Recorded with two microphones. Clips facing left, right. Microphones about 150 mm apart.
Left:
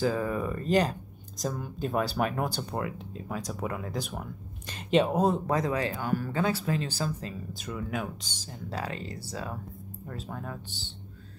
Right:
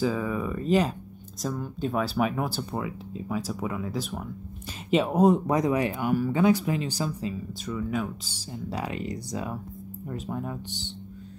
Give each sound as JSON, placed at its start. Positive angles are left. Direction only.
{"t": 0.0, "sound": "speech", "side_deg": 0}
{"t": 7.7, "sound": "speech", "side_deg": 5}
{"t": 8.3, "sound": "speech", "side_deg": -10}